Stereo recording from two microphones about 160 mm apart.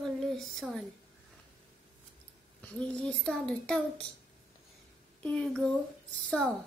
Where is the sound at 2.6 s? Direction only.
5° left (ahead or behind).